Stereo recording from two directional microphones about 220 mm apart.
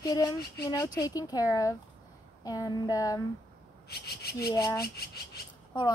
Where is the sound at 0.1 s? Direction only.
15° left (ahead or behind).